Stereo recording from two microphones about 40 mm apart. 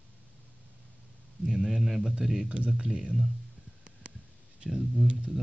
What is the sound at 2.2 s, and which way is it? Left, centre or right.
Speech, centre.